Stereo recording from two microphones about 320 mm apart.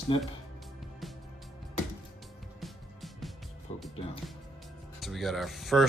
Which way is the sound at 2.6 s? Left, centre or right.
Centre.